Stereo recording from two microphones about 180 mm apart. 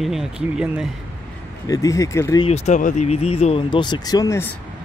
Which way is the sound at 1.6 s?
20° left (ahead or behind).